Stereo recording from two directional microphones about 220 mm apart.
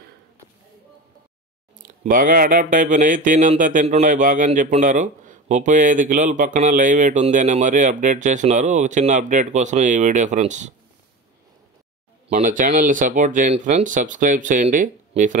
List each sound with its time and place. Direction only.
1.8 s speech: 35° right (ahead or behind)
12.3 s speech: 35° right (ahead or behind)